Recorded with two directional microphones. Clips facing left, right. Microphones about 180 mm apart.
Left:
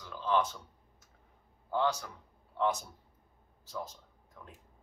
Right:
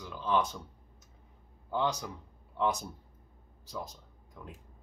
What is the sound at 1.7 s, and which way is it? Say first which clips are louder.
Speech: left 1 dB; 20° right (ahead or behind).